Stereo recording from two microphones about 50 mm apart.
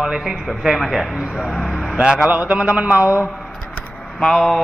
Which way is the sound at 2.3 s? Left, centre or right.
Right.